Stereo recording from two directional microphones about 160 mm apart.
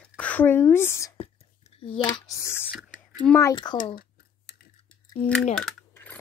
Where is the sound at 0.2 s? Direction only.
10° left (ahead or behind).